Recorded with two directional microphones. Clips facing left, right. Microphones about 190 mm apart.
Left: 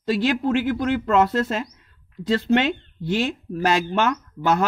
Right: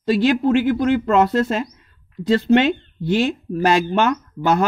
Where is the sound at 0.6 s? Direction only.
30° right (ahead or behind).